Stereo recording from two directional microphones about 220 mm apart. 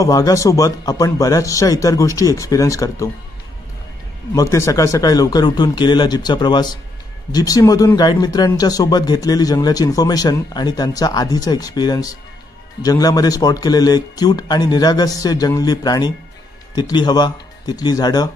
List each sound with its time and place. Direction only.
0.0 s speech: 15° left (ahead or behind)
4.4 s speech: 15° left (ahead or behind)